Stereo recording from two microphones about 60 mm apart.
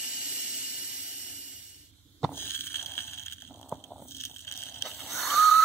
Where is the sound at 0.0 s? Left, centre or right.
Right.